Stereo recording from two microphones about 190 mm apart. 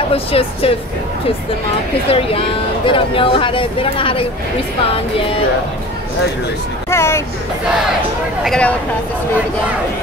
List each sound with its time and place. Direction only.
0.1 s speech: 30° left (ahead or behind)
2.0 s speech: 30° left (ahead or behind)
6.9 s speech: 15° left (ahead or behind)
8.5 s speech: 5° left (ahead or behind)